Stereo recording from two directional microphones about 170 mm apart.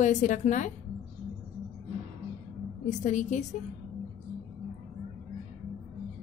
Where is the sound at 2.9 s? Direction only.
45° left (ahead or behind).